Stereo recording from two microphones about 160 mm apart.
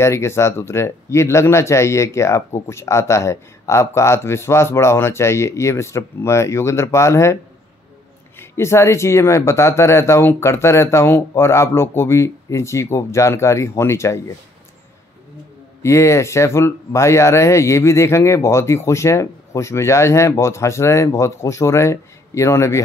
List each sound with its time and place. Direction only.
0.0 s speech: 15° left (ahead or behind)
8.4 s speech: 15° left (ahead or behind)
15.8 s speech: 15° left (ahead or behind)